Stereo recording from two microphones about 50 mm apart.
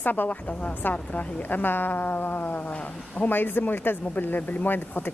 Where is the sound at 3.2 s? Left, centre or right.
Left.